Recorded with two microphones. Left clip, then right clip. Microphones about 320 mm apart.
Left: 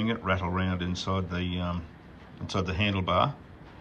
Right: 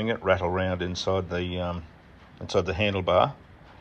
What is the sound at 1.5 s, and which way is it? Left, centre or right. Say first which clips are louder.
Speech: right 4 dB; right.